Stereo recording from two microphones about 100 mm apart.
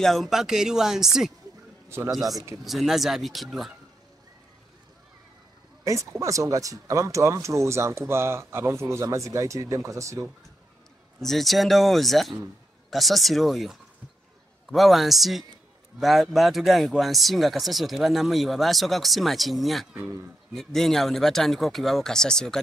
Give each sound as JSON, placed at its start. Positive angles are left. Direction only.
{"t": 0.0, "sound": "speech", "side_deg": 0}
{"t": 5.9, "sound": "speech", "side_deg": -30}
{"t": 11.1, "sound": "speech", "side_deg": 5}